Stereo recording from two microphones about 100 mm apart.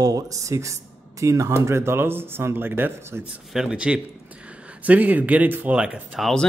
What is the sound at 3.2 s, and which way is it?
A man's voice, 5° right (ahead or behind).